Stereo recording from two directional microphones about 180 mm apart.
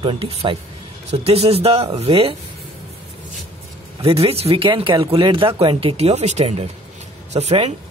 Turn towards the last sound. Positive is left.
turn(degrees=-35)  # may be behind; listen again after turning